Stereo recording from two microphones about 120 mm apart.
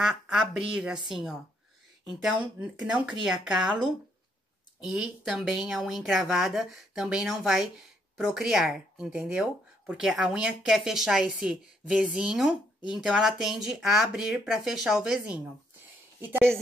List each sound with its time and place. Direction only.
0.0 s speech: 5° right (ahead or behind)
4.7 s speech: 5° right (ahead or behind)